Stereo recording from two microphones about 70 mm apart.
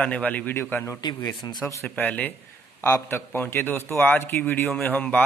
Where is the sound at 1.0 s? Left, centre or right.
Left.